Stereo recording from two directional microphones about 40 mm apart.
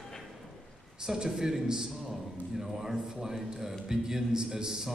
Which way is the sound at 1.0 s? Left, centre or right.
Centre.